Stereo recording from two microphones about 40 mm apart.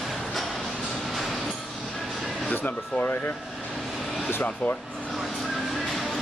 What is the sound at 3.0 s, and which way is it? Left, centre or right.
Speech, left.